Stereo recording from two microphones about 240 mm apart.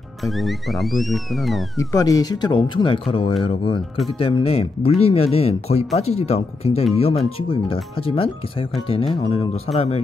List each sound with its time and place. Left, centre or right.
0.2 s speech: centre
1.8 s speech: centre